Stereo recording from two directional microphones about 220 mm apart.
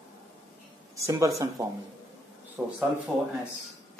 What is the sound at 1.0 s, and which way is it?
Speech, 15° right (ahead or behind).